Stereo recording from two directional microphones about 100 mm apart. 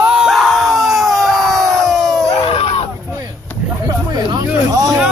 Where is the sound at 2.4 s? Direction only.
75° left (ahead or behind).